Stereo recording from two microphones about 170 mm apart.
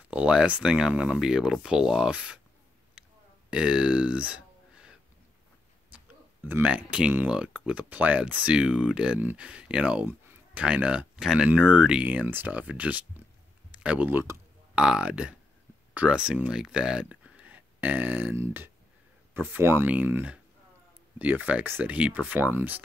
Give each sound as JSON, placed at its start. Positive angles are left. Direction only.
{"t": 0.0, "sound": "speech", "side_deg": -5}
{"t": 2.9, "sound": "burping", "side_deg": -5}
{"t": 6.4, "sound": "speech", "side_deg": -10}